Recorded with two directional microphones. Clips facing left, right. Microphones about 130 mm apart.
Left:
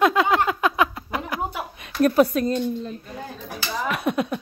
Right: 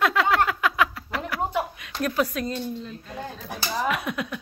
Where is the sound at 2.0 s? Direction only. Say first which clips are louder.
Left 8 dB; 35° left (ahead or behind).